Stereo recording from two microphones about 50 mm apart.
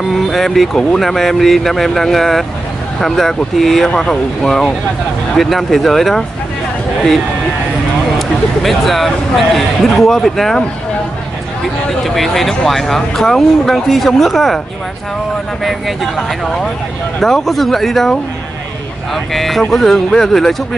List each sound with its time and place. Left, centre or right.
0.3 s speech: centre
8.2 s speech: centre
12.0 s speech: centre
15.6 s speech: centre
19.3 s speech: centre